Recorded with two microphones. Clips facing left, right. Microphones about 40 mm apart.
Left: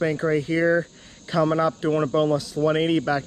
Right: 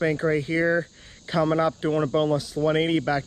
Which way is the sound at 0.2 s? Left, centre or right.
Centre.